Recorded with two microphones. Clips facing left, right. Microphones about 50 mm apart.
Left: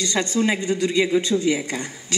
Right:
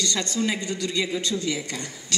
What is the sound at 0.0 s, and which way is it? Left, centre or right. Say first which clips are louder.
A man's voice: left 4 dB; left.